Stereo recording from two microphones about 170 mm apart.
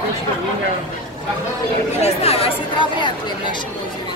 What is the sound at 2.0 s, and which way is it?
Speech, 35° left (ahead or behind).